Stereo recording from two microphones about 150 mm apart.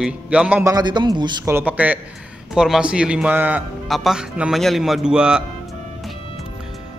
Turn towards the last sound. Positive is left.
turn(degrees=-5)  # may be behind; listen again after turning